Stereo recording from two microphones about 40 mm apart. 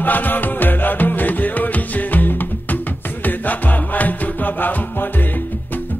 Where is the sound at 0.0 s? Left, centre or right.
Left.